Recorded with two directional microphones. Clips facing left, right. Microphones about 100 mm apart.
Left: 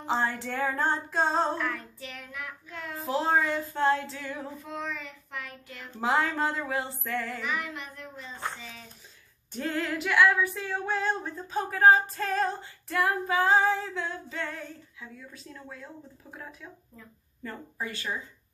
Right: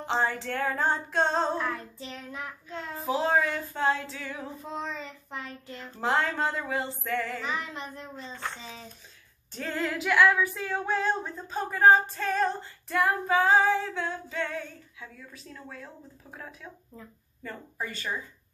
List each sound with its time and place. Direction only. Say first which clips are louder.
0.0 s female singing: right 1 dB; 5° left (ahead or behind)
1.6 s child singing: right 1 dB; 30° right (ahead or behind)
3.1 s female singing: even; centre (ahead or behind)
4.6 s child singing: right 3 dB; 25° right (ahead or behind)
5.9 s female singing: even; 5° left (ahead or behind)
7.4 s child singing: even; 30° right (ahead or behind)
9.8 s female singing: right 1 dB; centre (ahead or behind)
17.4 s speech: even; centre (ahead or behind)